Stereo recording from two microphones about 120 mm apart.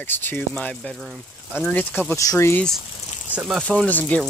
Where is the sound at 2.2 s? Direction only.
25° left (ahead or behind).